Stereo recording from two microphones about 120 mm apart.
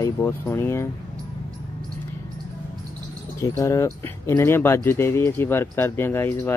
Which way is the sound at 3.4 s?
25° left (ahead or behind).